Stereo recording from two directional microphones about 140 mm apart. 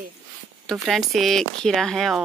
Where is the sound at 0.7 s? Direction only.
Centre (ahead or behind).